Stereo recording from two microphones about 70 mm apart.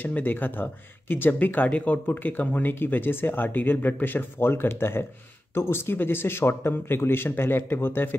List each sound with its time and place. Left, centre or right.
0.0 s speech: left